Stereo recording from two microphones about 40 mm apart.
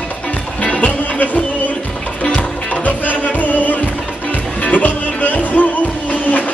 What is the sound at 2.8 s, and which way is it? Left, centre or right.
Music, left.